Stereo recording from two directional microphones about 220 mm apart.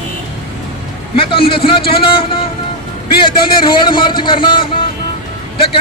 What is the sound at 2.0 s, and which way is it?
A man's voice, 25° left (ahead or behind).